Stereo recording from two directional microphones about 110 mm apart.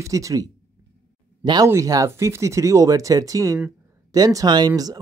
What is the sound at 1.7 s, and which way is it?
Speech, 30° right (ahead or behind).